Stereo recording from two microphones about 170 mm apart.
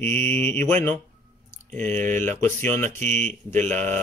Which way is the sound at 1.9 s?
45° right (ahead or behind).